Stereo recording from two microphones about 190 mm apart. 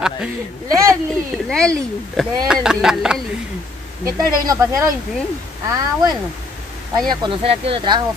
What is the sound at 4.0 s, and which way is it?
Speech, 15° right (ahead or behind).